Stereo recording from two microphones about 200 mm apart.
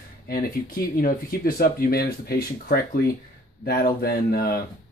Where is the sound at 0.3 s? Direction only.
45° left (ahead or behind).